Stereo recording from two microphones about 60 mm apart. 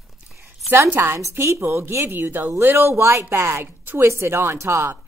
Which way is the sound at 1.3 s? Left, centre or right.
Right.